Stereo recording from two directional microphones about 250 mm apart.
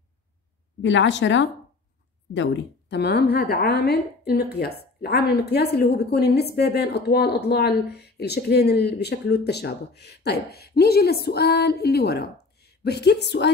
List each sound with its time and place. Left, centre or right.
0.8 s a woman's voice: left